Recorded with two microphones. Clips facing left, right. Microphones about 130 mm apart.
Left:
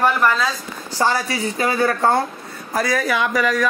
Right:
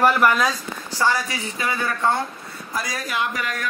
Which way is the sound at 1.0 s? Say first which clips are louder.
Left 3 dB; 35° left (ahead or behind).